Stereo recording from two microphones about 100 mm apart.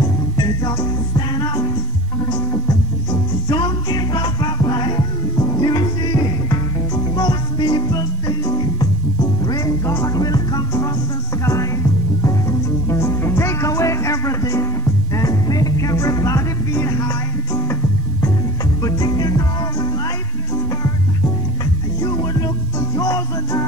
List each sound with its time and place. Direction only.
0.4 s music: 40° left (ahead or behind)
9.8 s music: 30° left (ahead or behind)
18.8 s music: 40° left (ahead or behind)
22.0 s music: 40° left (ahead or behind)